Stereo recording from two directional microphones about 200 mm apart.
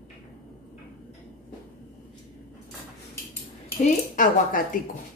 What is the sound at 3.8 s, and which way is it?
Dishes, 40° left (ahead or behind).